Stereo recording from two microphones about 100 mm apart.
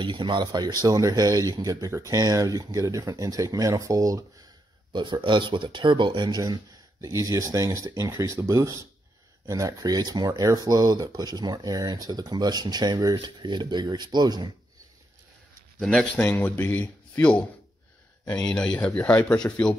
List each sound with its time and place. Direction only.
0.0 s speech: 55° right (ahead or behind); by 4.5 s 35° right (ahead or behind)
4.9 s speech: 50° right (ahead or behind)
15.8 s speech: 5° left (ahead or behind)
16.3 s speech: 20° left (ahead or behind)